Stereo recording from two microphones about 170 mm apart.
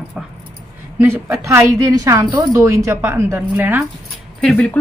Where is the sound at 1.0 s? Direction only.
15° right (ahead or behind).